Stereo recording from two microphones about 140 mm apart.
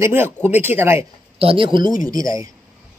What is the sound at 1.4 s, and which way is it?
A man's voice, 40° right (ahead or behind).